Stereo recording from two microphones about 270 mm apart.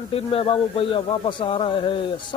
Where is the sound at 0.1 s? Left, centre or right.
Left.